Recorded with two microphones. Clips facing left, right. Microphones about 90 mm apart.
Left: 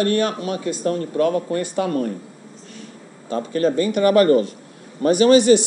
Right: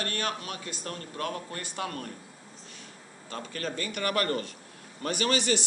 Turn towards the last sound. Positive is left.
turn(degrees=15)  # may be behind; listen again after turning